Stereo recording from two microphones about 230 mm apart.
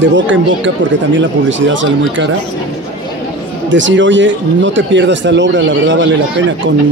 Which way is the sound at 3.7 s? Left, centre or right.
Right.